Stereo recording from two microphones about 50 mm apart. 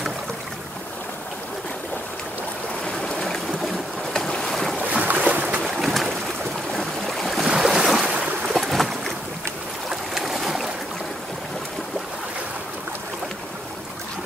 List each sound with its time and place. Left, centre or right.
4.1 s boat: centre
5.0 s boat: right
5.6 s boat: centre